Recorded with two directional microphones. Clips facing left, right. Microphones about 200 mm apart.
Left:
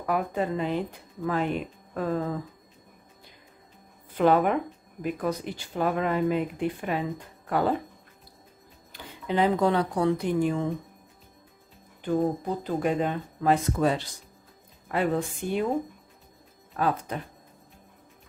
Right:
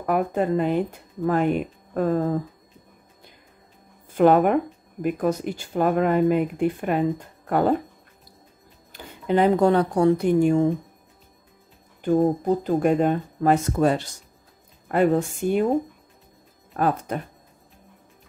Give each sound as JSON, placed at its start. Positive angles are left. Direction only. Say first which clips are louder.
{"t": 0.0, "sound": "speech", "louder": "right 5 dB", "side_deg": -50}
{"t": 4.2, "sound": "speech", "louder": "right 5 dB", "side_deg": -50}
{"t": 8.9, "sound": "speech", "louder": "right 5 dB", "side_deg": -50}
{"t": 12.6, "sound": "speech", "louder": "right 5 dB", "side_deg": -50}
{"t": 16.7, "sound": "speech", "louder": "right 4 dB", "side_deg": -50}